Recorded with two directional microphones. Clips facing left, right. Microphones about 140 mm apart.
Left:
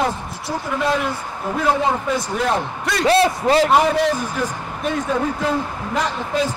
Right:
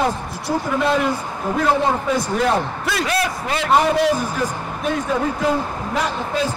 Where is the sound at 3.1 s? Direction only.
30° left (ahead or behind).